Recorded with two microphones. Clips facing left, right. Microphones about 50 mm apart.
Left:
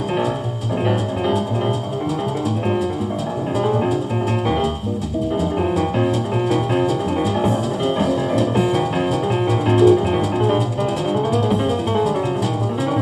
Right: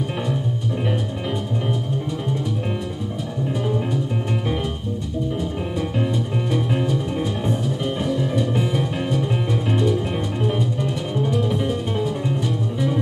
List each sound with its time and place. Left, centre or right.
8.4 s music: left
9.7 s music: left